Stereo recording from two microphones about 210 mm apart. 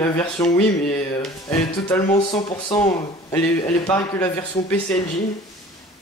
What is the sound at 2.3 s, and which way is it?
Speech, 30° left (ahead or behind).